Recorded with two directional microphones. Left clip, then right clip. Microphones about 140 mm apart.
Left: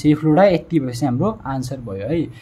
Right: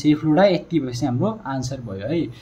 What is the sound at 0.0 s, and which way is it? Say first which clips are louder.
Speech: left 3 dB; 40° left (ahead or behind).